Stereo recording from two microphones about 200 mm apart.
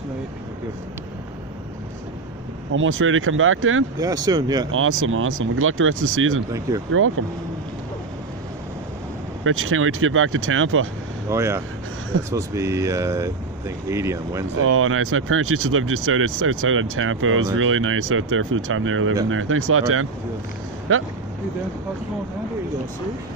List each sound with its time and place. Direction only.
2.7 s speech: 80° right
4.3 s speech: 20° right (ahead or behind)
4.6 s speech: 90° right
9.4 s speech: 90° right
11.2 s speech: 15° right (ahead or behind)
14.6 s speech: 90° right